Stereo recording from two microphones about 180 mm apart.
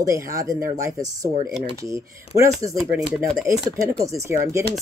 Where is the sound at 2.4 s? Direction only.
15° right (ahead or behind).